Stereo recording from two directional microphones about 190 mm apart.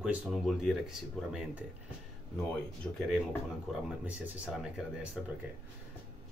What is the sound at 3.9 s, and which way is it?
Speech, 5° right (ahead or behind).